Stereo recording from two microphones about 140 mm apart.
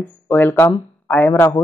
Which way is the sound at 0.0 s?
15° left (ahead or behind).